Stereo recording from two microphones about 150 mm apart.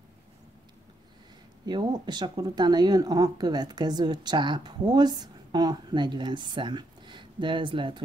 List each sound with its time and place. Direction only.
1.7 s speech: 30° right (ahead or behind)